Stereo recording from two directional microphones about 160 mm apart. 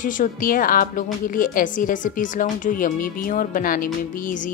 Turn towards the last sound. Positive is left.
turn(degrees=55)  # may be behind; listen again after turning